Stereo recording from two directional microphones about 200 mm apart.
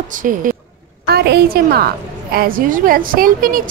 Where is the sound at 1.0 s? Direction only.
55° right (ahead or behind).